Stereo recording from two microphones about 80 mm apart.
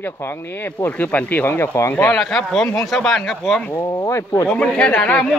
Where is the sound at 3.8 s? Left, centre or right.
Left.